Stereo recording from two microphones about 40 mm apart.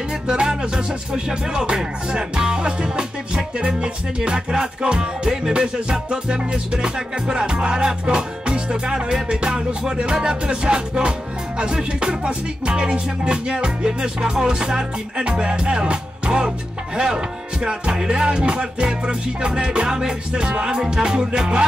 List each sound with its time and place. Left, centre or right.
0.3 s music: right